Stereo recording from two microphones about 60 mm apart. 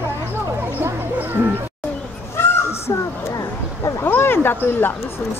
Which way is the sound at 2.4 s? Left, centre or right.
Left.